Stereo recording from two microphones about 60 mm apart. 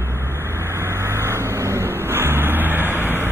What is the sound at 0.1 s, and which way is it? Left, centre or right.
Vehicle, right.